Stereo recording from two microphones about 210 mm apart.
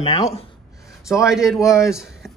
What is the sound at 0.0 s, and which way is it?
Speech, 30° left (ahead or behind).